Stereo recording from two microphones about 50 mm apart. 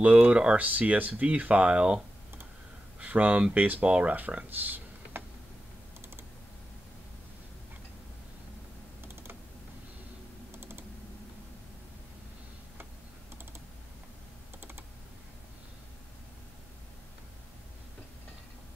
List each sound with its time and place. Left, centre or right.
0.0 s speech: right
0.7 s speech: right
3.0 s speech: right
9.0 s computer keyboard: right
10.5 s typing: right
14.6 s computer keyboard: right